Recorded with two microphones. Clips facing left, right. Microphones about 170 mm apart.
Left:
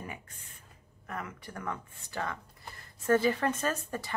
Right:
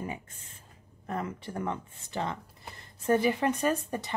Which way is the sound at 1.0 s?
30° right (ahead or behind).